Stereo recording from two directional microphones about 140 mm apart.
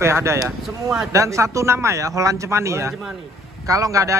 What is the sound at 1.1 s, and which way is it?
Speech, 20° right (ahead or behind).